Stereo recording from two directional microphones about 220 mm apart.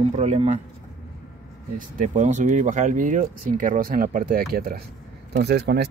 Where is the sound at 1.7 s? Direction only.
35° right (ahead or behind).